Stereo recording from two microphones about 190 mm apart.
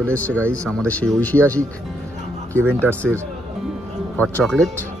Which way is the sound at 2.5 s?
10° right (ahead or behind).